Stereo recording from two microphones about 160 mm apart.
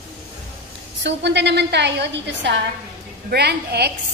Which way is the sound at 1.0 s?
90° right.